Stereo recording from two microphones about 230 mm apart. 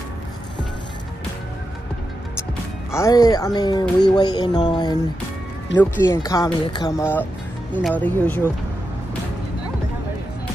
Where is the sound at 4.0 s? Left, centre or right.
Centre.